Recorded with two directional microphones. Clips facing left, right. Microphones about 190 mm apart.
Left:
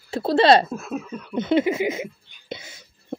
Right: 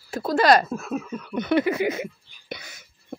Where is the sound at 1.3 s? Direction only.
20° left (ahead or behind).